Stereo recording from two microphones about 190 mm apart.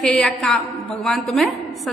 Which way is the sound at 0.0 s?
5° left (ahead or behind).